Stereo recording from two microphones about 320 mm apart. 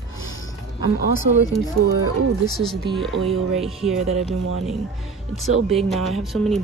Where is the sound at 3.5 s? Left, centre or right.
Centre.